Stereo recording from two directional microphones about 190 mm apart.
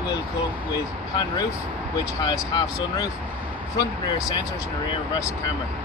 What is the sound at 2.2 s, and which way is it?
Speech, 20° left (ahead or behind).